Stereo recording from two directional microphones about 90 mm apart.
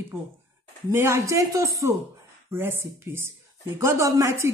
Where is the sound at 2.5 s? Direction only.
25° right (ahead or behind).